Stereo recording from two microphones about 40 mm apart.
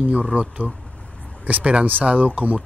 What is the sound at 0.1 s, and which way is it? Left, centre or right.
Speech, right.